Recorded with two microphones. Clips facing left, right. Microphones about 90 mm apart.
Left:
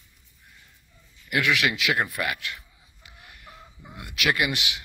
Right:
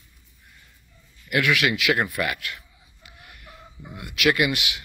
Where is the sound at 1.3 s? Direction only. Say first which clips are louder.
Right 2 dB; 20° left (ahead or behind).